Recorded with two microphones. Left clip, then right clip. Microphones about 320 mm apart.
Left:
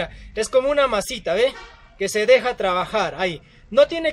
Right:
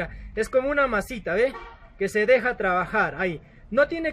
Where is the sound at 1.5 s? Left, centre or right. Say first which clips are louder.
Left 5 dB; left.